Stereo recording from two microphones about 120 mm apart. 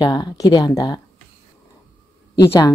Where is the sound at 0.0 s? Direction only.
35° left (ahead or behind).